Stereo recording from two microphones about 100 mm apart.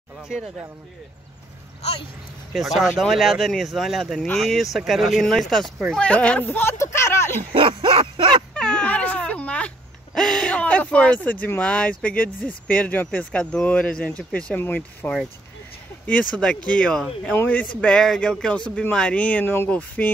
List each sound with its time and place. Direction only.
2.5 s speech: centre (ahead or behind)
6.4 s speech: 25° left (ahead or behind)
7.5 s speech: 60° right (ahead or behind)
8.5 s wail: 10° left (ahead or behind)
10.1 s speech: 5° left (ahead or behind)
17.7 s speech: 5° left (ahead or behind)